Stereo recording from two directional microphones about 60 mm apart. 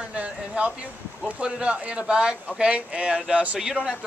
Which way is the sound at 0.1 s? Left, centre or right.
Right.